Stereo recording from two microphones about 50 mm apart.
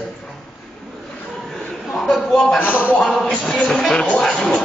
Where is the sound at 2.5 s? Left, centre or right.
Left.